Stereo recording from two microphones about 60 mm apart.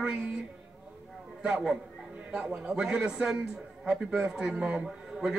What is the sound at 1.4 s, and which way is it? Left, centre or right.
A man's voice, centre.